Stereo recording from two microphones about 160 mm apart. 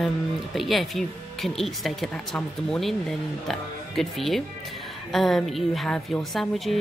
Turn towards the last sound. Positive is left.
turn(degrees=0)  # may be behind; listen again after turning